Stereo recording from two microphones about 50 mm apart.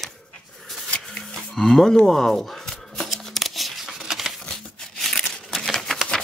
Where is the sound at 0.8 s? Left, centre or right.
Left.